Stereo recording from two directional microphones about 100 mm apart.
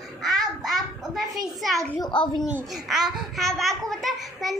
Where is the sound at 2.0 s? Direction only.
50° left (ahead or behind).